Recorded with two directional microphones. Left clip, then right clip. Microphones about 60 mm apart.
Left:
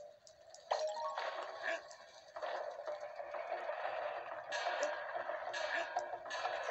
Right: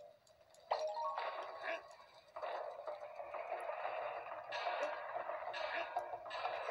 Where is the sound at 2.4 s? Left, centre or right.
Left.